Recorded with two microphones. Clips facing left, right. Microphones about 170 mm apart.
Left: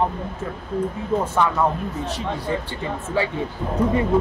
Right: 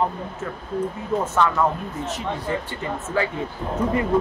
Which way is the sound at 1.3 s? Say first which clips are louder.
Right 2 dB; 15° left (ahead or behind).